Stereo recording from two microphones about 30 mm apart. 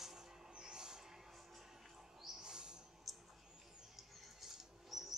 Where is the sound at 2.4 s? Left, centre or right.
Right.